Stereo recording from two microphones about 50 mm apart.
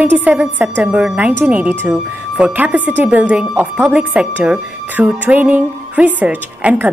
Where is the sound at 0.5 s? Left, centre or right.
Right.